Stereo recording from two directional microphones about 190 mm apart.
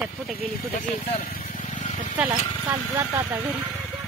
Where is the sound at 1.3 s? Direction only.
40° left (ahead or behind).